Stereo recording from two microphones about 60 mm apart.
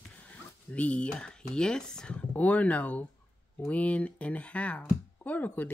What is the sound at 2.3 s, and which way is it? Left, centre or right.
Speech, left.